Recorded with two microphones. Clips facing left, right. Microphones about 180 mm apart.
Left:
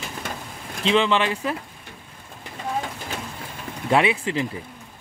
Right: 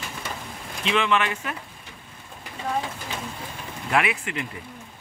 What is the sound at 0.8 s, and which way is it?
Speech, 30° left (ahead or behind).